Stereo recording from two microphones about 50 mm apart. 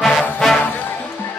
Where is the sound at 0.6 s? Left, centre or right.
Left.